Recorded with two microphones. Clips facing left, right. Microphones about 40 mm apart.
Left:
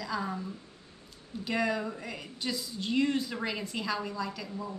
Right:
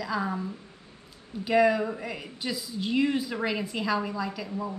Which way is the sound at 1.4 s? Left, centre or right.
Centre.